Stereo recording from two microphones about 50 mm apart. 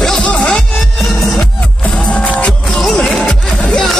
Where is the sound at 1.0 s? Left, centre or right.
Centre.